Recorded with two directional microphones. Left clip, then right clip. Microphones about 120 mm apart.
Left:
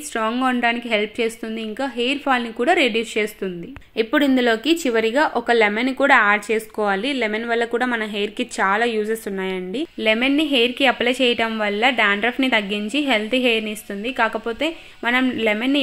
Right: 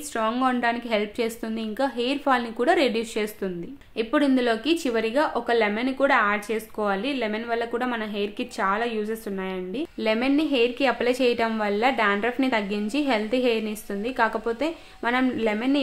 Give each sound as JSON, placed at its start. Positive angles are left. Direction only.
{"t": 0.1, "sound": "a woman's voice", "side_deg": 35}
{"t": 3.9, "sound": "speech", "side_deg": 40}